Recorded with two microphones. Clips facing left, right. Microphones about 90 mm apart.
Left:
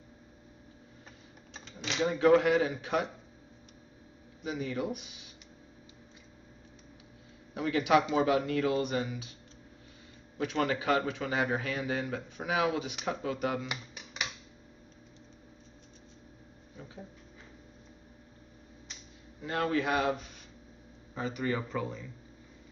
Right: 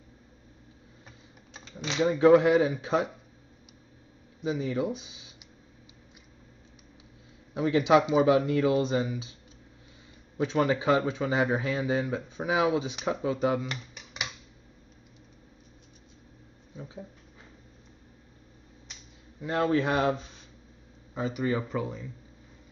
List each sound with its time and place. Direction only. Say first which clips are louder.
1.9 s a man's voice: right 5 dB; 20° right (ahead or behind)
4.4 s speech: right 5 dB; 20° right (ahead or behind)
7.5 s a man's voice: right 4 dB; 20° right (ahead or behind)
10.3 s a man's voice: right 5 dB; 20° right (ahead or behind)
19.4 s a man's voice: right 4 dB; 25° right (ahead or behind)
21.1 s speech: right 4 dB; 15° right (ahead or behind)